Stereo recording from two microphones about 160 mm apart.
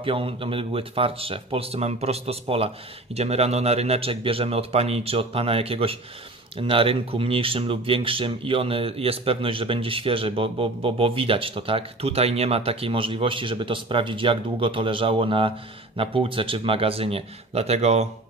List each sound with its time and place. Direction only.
0.0 s speech: 35° right (ahead or behind)